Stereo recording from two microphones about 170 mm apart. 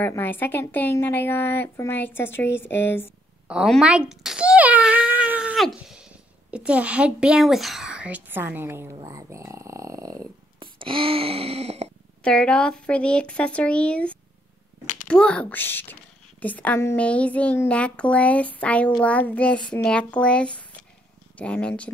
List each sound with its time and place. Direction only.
0.0 s a woman's voice: 10° left (ahead or behind)
3.4 s a sound: centre (ahead or behind)
6.5 s speech: 5° right (ahead or behind)
10.6 s wail: 30° right (ahead or behind)
12.2 s a woman's voice: 5° left (ahead or behind)